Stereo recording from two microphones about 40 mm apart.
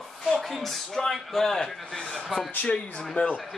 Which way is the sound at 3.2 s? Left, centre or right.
Left.